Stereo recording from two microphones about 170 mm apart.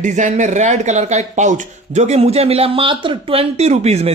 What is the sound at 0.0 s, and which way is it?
Speech, 45° right (ahead or behind).